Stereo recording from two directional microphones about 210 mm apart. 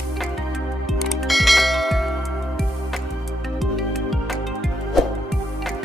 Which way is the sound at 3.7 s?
Centre (ahead or behind).